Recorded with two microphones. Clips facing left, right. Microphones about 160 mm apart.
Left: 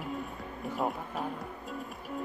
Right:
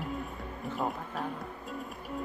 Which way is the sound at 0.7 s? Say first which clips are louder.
Left 1 dB; centre (ahead or behind).